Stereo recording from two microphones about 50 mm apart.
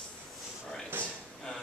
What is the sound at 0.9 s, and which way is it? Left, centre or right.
Speech, right.